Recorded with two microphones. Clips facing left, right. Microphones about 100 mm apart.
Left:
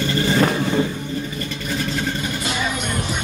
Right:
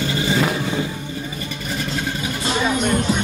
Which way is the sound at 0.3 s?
10° right (ahead or behind).